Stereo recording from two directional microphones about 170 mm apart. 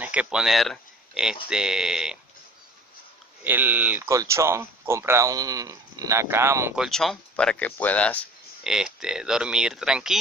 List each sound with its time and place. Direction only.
0.0 s speech: 5° right (ahead or behind)
3.4 s speech: 10° right (ahead or behind)
6.8 s speech: centre (ahead or behind)
8.6 s speech: 5° right (ahead or behind)